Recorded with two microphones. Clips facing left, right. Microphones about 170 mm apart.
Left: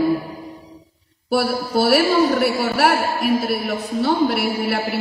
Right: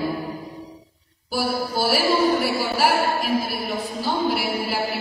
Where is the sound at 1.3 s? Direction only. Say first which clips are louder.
Left 5 dB; 70° left (ahead or behind).